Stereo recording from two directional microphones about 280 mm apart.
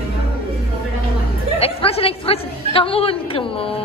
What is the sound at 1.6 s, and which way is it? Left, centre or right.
A woman's voice, left.